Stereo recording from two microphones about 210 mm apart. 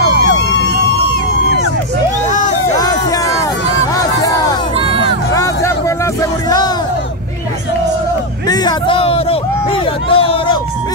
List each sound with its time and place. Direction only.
0.2 s emergency vehicle: 55° left (ahead or behind)
2.7 s hubbub: 15° left (ahead or behind)
3.9 s crowd: 15° left (ahead or behind)
5.3 s hubbub: 15° left (ahead or behind)
8.5 s a sound: 20° left (ahead or behind)